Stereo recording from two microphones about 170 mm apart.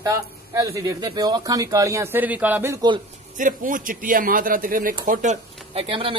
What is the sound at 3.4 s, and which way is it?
Speech, 50° right (ahead or behind).